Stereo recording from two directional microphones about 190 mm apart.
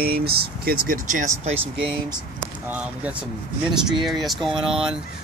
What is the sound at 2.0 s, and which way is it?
Speech, 10° right (ahead or behind).